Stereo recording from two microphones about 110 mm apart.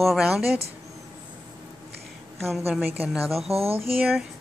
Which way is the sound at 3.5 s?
65° right (ahead or behind).